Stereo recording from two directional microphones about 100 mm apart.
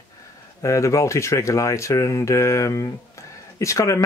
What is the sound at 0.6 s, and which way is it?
Speech, 30° left (ahead or behind).